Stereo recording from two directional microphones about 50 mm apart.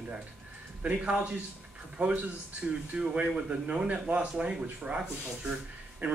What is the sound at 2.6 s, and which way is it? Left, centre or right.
Speech, right.